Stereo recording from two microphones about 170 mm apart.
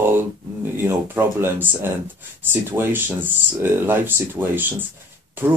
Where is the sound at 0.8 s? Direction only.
10° right (ahead or behind).